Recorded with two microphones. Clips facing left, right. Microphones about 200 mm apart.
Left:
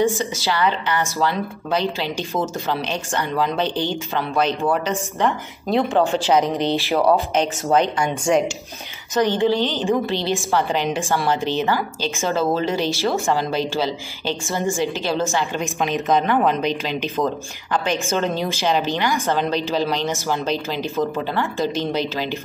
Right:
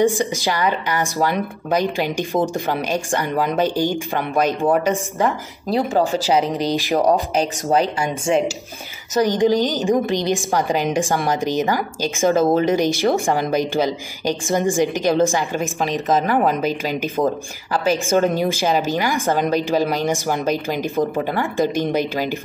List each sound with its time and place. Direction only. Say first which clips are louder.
0.0 s a woman's voice: right 2 dB; 15° right (ahead or behind)
5.7 s speech: even; centre (ahead or behind)
6.6 s a woman's voice: right 1 dB; 15° right (ahead or behind)
7.0 s speech: even; 40° right (ahead or behind)
9.2 s a woman's voice: right 2 dB; 15° right (ahead or behind)
15.6 s a woman's voice: right 1 dB; centre (ahead or behind)